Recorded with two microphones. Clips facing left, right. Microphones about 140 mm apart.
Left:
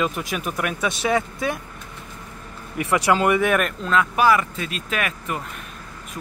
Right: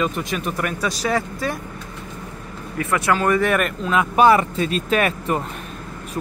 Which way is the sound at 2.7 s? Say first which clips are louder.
Left 1 dB; 20° left (ahead or behind).